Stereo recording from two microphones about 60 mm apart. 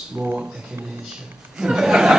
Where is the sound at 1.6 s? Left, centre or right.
Centre.